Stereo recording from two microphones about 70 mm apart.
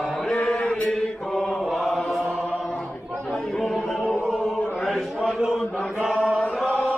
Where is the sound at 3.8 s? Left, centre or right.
Centre.